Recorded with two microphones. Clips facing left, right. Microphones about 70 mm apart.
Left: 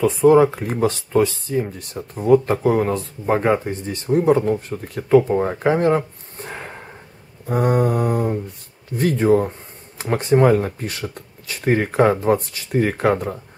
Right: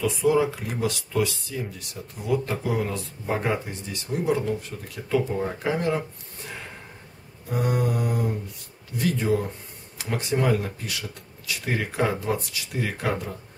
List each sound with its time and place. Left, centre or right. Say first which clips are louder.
0.0 s speech: left 9 dB; left